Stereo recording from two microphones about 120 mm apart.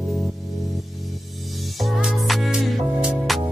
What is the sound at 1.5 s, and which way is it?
Music, centre (ahead or behind).